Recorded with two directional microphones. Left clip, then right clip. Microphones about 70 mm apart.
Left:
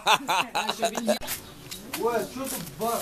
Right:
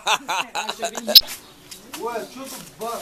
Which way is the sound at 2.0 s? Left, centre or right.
Right.